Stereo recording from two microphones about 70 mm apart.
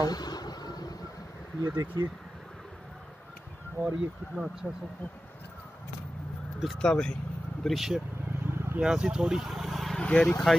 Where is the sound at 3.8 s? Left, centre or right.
Right.